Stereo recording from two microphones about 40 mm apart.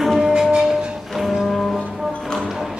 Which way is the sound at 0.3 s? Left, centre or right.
Right.